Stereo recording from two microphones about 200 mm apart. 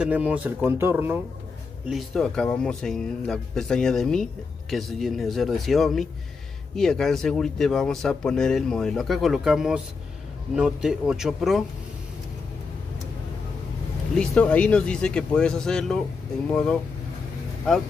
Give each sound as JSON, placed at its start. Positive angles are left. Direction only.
{"t": 0.0, "sound": "speech", "side_deg": -5}
{"t": 1.9, "sound": "speech", "side_deg": 0}
{"t": 14.1, "sound": "speech", "side_deg": 5}